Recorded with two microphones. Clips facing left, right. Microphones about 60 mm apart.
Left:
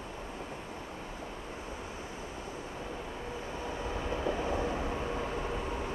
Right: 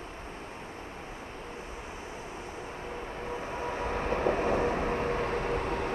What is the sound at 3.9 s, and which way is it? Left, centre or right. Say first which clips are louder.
Vehicle: right 5 dB; right.